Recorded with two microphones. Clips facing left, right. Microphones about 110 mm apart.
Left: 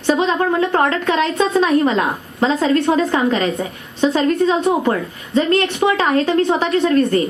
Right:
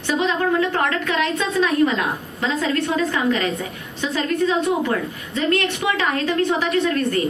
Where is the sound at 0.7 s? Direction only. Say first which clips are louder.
Left 5 dB; 30° left (ahead or behind).